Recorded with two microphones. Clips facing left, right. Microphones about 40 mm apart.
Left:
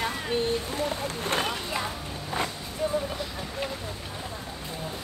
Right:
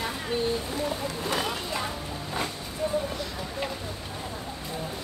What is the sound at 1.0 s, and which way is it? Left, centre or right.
Speech, left.